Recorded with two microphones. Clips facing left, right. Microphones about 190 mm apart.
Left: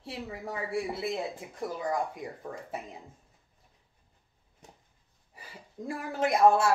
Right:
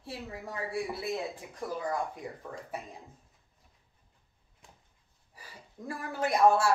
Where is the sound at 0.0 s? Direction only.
25° left (ahead or behind).